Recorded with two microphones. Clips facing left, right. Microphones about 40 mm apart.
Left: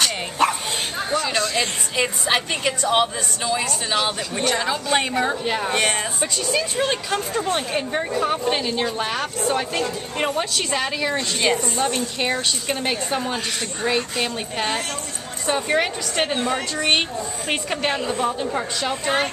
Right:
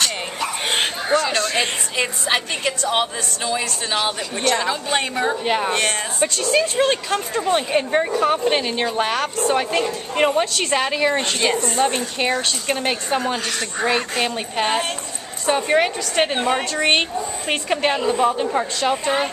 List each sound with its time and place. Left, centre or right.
0.7 s bow-wow: right
1.1 s a woman's voice: centre
5.4 s a woman's voice: right
5.7 s a woman's voice: centre
6.5 s a woman's voice: centre
10.4 s a woman's voice: centre
10.7 s a woman's voice: centre
11.4 s a woman's voice: centre
11.8 s a woman's voice: centre
13.8 s a woman's voice: right
14.2 s a woman's voice: centre
16.3 s a woman's voice: right
16.7 s a woman's voice: centre